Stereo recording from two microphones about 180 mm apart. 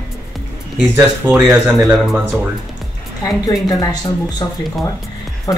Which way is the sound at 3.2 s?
20° left (ahead or behind).